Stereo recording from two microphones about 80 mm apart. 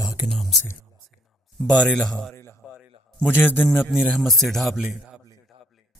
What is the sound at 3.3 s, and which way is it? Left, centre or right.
Speech, left.